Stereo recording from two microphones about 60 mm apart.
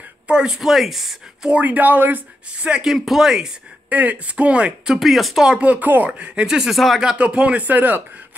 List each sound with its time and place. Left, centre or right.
0.6 s speech: centre
1.5 s speech: right
2.8 s speech: centre
3.9 s speech: right
4.9 s speech: centre
5.6 s speech: right; by 7.0 s centre
7.2 s speech: centre